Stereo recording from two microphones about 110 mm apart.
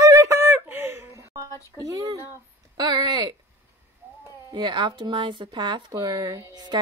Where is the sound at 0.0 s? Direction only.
30° right (ahead or behind).